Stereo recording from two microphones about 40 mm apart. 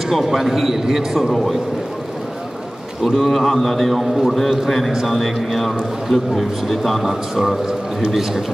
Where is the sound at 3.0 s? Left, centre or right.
Centre.